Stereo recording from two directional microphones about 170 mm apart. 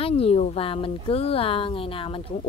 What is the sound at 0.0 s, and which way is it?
Speech, 35° left (ahead or behind).